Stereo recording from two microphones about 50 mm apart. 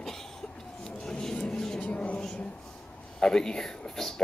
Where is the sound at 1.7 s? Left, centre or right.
Left.